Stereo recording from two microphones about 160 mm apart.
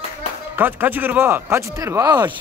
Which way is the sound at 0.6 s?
10° right (ahead or behind).